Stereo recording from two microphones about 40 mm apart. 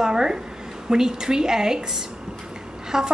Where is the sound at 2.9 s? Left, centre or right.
Centre.